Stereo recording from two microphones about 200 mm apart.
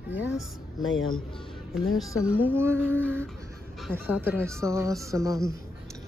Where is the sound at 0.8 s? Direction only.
90° left.